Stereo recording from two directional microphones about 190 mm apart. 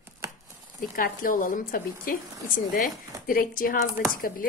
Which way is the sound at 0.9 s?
45° left (ahead or behind).